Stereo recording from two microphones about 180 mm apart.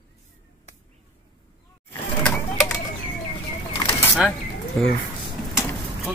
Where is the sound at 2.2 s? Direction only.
5° left (ahead or behind).